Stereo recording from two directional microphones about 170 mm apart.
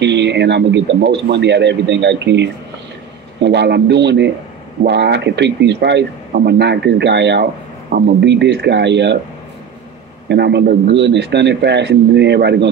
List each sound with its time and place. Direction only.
0.0 s speech: 90° right
6.3 s speech: 80° right
7.9 s a man's voice: 70° right (ahead or behind); by 9.2 s 90° right
10.2 s speech: 85° right